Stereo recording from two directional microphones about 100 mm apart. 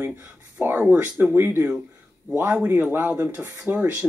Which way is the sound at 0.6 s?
20° right (ahead or behind).